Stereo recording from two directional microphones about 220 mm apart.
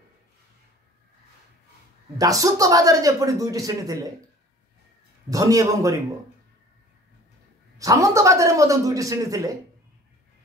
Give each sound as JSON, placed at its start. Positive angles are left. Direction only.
{"t": 2.1, "sound": "speech", "side_deg": -15}
{"t": 5.3, "sound": "speech", "side_deg": -15}
{"t": 7.7, "sound": "speech", "side_deg": -15}